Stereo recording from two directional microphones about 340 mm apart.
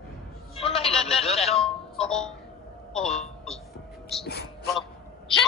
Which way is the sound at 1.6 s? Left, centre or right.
Centre.